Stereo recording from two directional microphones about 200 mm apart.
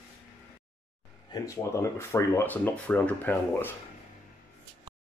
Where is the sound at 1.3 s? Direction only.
15° left (ahead or behind).